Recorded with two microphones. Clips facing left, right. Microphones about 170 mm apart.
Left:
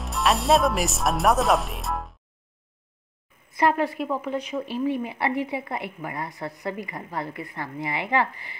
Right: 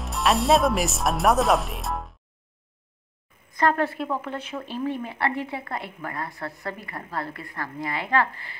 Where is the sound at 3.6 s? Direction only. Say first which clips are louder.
Left 1 dB; 5° left (ahead or behind).